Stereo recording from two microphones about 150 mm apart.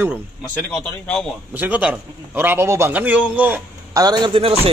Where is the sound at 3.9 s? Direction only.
25° right (ahead or behind).